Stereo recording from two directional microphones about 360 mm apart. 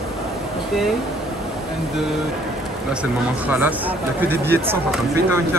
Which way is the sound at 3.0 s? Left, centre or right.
Centre.